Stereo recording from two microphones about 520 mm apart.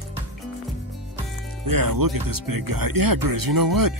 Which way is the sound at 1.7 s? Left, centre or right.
Right.